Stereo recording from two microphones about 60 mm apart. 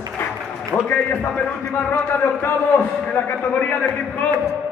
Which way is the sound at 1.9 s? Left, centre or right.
Left.